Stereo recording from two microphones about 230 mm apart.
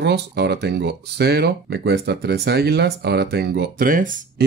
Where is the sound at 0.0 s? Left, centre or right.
Right.